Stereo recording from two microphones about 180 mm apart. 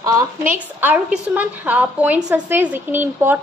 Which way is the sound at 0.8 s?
10° right (ahead or behind).